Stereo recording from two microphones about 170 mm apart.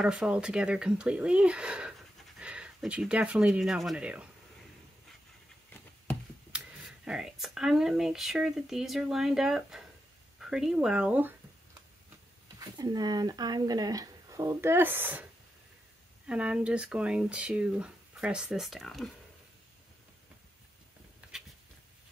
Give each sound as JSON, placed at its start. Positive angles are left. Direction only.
{"t": 0.0, "sound": "speech", "side_deg": -5}
{"t": 6.5, "sound": "a sound", "side_deg": -5}
{"t": 7.1, "sound": "speech", "side_deg": -5}
{"t": 12.5, "sound": "speech", "side_deg": -25}
{"t": 16.3, "sound": "speech", "side_deg": -5}